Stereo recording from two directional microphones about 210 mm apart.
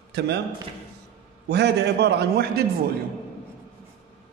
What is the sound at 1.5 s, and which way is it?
A man's voice, 55° right (ahead or behind).